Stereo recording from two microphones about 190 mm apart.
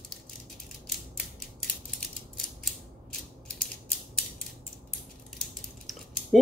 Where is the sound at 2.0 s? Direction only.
Centre (ahead or behind).